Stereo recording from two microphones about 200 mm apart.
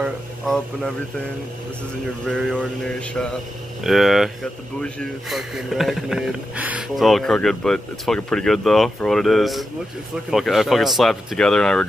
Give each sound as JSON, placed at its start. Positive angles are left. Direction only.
{"t": 0.0, "sound": "speech", "side_deg": 0}
{"t": 2.2, "sound": "speech", "side_deg": 5}